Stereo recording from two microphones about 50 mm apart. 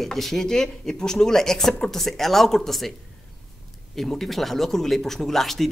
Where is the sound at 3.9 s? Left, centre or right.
Centre.